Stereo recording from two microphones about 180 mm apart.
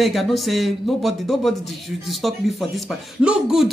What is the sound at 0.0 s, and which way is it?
Speech, centre (ahead or behind).